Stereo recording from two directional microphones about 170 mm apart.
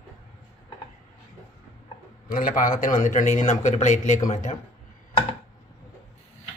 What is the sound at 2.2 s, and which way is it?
A man's voice, 55° left (ahead or behind).